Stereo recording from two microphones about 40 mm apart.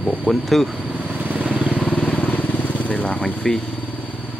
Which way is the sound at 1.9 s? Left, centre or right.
Left.